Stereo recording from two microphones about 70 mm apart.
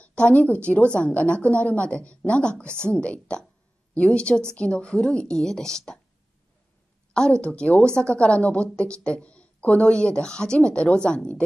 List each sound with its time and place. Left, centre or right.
0.0 s a woman's voice: centre
2.6 s a woman's voice: right
2.9 s speech: centre
7.2 s speech: centre